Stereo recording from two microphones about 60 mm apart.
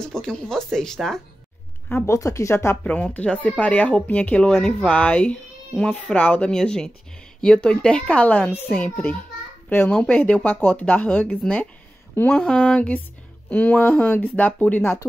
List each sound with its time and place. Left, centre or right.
0.0 s speech: centre
2.0 s speech: left
2.8 s speech: left
4.5 s speech: centre
4.8 s speech: left
6.5 s speech: centre
9.7 s speech: left
9.9 s speech: left